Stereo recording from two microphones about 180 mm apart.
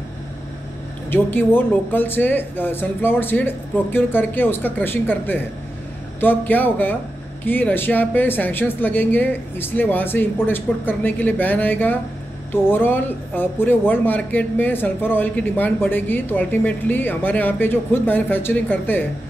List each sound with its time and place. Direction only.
1.1 s a man's voice: 10° left (ahead or behind)